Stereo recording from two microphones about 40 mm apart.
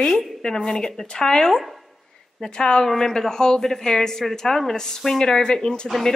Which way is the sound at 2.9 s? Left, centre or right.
Centre.